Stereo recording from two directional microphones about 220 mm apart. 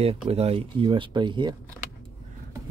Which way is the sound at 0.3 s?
25° right (ahead or behind).